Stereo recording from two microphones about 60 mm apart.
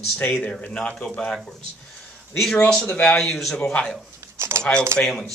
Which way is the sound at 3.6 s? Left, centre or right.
Centre.